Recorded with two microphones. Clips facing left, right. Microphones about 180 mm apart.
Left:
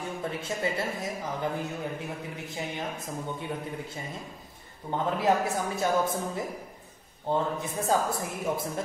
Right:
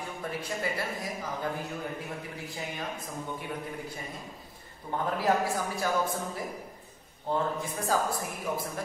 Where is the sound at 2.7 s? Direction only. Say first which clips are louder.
Left 2 dB; 25° left (ahead or behind).